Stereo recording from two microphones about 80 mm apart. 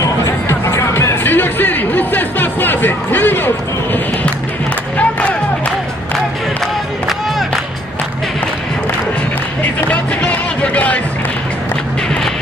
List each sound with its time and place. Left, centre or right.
0.0 s music: left
9.8 s music: centre